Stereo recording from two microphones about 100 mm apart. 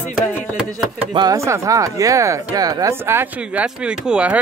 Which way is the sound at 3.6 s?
10° right (ahead or behind).